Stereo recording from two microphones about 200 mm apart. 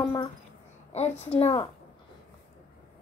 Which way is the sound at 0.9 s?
35° left (ahead or behind).